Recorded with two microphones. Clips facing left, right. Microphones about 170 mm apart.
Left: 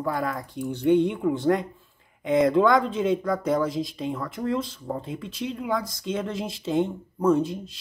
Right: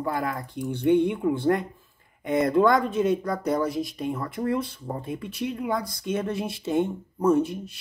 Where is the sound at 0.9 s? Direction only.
10° right (ahead or behind).